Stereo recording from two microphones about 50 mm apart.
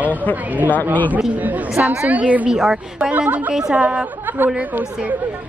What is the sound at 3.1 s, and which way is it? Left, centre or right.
Speech, right.